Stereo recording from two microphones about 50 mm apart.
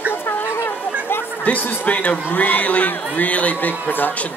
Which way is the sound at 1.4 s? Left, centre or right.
Left.